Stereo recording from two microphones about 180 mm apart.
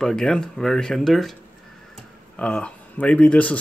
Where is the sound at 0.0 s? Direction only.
5° left (ahead or behind).